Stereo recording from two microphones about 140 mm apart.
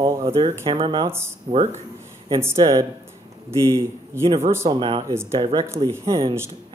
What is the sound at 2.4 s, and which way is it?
Speech, 25° right (ahead or behind).